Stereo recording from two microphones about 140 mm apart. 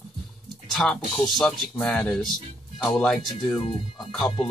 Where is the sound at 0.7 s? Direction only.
5° left (ahead or behind).